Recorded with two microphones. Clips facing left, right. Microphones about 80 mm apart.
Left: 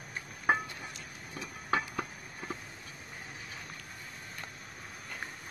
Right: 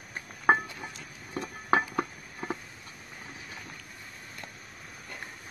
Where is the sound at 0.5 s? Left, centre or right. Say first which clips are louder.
Right 5 dB; right.